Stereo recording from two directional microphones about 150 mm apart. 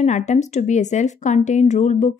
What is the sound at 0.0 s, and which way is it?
A woman's voice, 50° left (ahead or behind).